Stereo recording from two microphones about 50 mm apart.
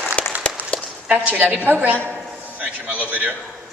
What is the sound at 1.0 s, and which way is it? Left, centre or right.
A woman's voice, right.